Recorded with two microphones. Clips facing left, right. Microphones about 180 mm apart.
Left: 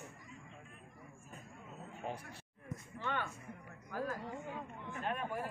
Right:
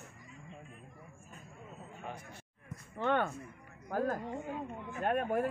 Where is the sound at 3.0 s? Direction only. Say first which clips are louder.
Right 10 dB; 55° right (ahead or behind).